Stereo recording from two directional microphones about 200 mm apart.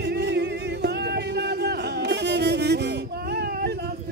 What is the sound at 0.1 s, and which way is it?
Music, 55° right (ahead or behind).